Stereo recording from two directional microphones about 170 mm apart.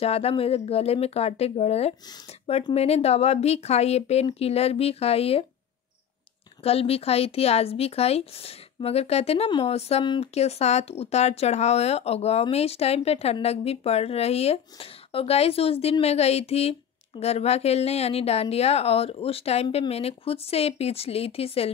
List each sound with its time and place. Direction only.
0.0 s speech: 35° left (ahead or behind)
6.6 s speech: 35° left (ahead or behind)